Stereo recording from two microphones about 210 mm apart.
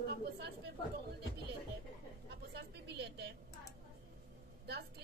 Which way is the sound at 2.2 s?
55° right (ahead or behind).